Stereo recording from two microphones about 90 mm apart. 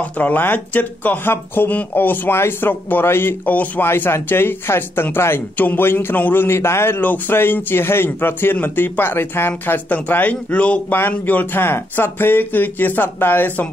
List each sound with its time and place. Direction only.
0.0 s speech: 20° left (ahead or behind)